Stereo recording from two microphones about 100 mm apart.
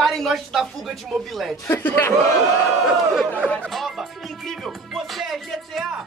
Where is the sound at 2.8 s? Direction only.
5° right (ahead or behind).